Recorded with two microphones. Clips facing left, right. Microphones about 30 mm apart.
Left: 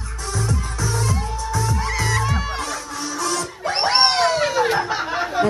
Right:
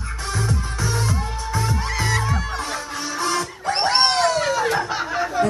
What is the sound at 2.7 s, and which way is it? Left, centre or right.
Music, right.